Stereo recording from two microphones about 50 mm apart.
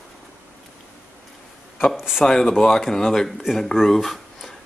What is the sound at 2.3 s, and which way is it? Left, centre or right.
Speech, centre.